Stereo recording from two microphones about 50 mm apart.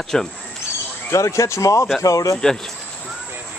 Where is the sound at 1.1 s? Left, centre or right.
Left.